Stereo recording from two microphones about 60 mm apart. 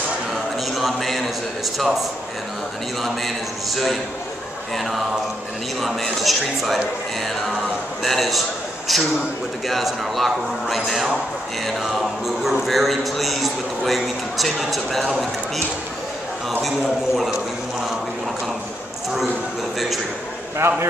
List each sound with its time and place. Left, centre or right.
0.7 s a man's voice: centre
8.0 s a man's voice: centre
20.6 s a man's voice: right